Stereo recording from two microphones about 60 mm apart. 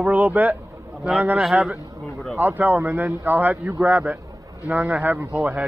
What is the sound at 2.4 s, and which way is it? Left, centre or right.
A man's voice, right.